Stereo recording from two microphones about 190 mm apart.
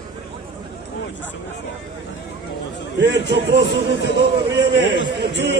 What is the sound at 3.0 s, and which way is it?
Speech, 65° right (ahead or behind).